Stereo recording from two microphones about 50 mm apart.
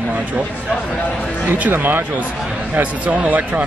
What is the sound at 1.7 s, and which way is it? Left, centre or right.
Speech, right.